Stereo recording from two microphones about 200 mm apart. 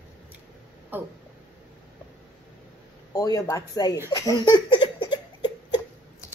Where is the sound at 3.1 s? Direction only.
20° left (ahead or behind).